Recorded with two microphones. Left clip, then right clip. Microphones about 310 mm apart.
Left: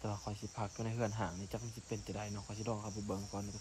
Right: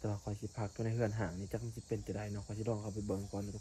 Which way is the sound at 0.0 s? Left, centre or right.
Centre.